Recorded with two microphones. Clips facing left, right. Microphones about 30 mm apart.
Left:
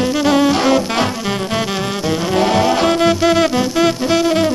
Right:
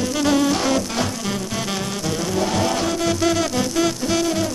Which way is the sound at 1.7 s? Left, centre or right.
Left.